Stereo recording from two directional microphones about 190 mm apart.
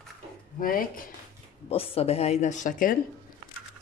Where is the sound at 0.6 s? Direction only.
50° left (ahead or behind).